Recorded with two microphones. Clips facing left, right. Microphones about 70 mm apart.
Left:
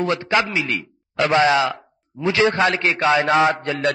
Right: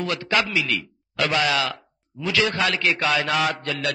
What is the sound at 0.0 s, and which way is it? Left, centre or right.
A man's voice, left.